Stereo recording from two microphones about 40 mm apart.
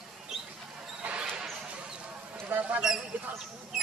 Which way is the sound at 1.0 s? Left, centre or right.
Right.